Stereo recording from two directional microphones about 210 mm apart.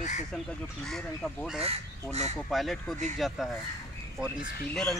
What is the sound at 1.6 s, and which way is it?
Speech, 30° right (ahead or behind).